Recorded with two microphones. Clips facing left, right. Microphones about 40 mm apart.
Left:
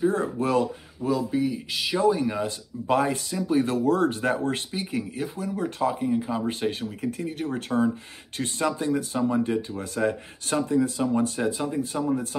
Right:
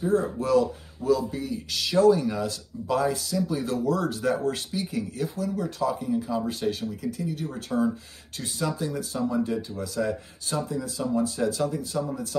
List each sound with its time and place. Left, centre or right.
0.1 s speech: left
11.4 s speech: left